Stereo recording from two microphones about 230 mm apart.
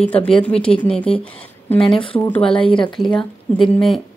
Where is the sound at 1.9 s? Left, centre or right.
Left.